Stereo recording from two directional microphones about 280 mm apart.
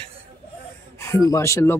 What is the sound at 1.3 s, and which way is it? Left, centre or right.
Speech, centre.